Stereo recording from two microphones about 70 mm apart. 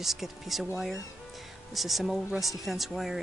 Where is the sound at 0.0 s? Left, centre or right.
Centre.